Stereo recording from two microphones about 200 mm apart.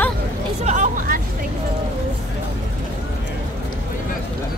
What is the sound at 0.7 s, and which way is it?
Hubbub, 40° right (ahead or behind).